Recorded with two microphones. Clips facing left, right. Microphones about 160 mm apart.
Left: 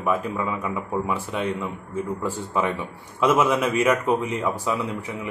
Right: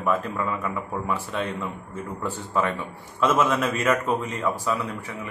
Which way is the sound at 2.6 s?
15° left (ahead or behind).